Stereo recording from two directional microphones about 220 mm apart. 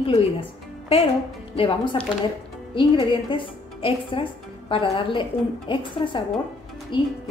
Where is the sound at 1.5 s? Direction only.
25° left (ahead or behind).